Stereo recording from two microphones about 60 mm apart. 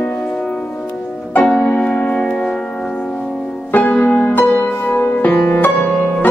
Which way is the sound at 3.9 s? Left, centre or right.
Left.